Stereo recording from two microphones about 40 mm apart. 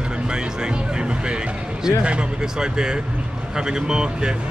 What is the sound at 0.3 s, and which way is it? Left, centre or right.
Speech, right.